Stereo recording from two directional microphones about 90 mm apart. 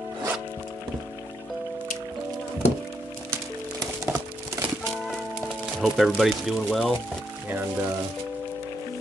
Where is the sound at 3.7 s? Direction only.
30° right (ahead or behind).